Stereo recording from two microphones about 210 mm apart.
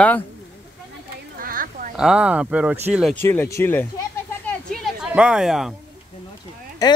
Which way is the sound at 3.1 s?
10° left (ahead or behind).